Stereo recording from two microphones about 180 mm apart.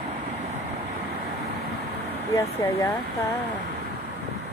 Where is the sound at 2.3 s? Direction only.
15° left (ahead or behind).